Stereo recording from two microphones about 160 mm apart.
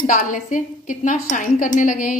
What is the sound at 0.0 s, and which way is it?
A woman's voice, 55° left (ahead or behind).